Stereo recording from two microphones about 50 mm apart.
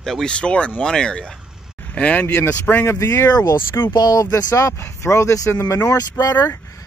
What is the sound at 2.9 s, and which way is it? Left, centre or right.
Speech, left.